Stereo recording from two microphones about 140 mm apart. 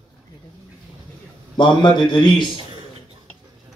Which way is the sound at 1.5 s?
35° left (ahead or behind).